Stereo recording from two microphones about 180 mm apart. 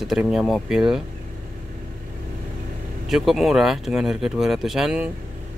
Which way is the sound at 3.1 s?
Centre (ahead or behind).